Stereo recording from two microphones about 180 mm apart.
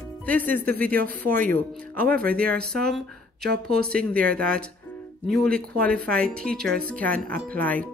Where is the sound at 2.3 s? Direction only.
5° left (ahead or behind).